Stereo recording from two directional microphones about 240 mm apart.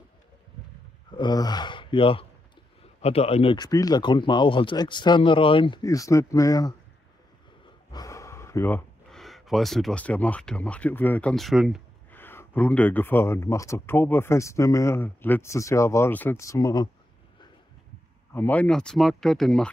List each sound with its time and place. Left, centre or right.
1.1 s speech: centre
7.9 s speech: centre
12.2 s speech: centre
18.3 s speech: centre